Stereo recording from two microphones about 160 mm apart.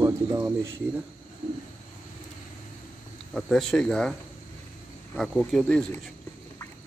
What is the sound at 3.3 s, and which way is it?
Speech, centre (ahead or behind).